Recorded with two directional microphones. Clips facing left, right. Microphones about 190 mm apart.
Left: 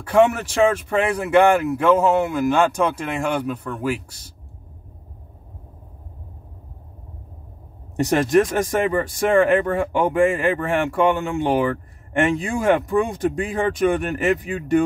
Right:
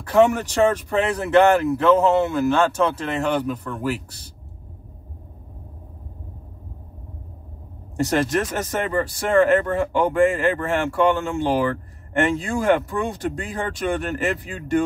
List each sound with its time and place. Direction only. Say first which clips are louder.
0.1 s speech: even; 10° left (ahead or behind)
7.9 s speech: left 4 dB; 15° left (ahead or behind)